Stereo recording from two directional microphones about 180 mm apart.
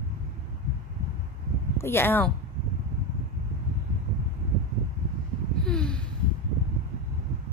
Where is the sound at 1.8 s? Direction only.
15° left (ahead or behind).